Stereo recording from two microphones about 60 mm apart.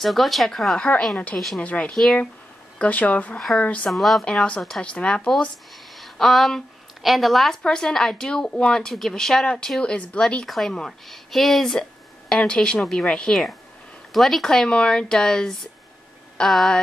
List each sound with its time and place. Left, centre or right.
0.0 s speech: centre
0.7 s a woman's voice: centre
3.3 s a woman's voice: centre
3.6 s speech: left
3.9 s a woman's voice: centre
4.8 s a woman's voice: centre
5.9 s a woman's voice: centre
10.2 s a woman's voice: centre